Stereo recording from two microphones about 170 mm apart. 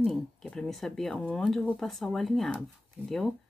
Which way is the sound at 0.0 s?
5° left (ahead or behind).